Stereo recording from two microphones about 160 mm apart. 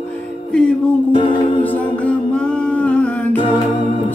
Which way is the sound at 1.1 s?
30° left (ahead or behind).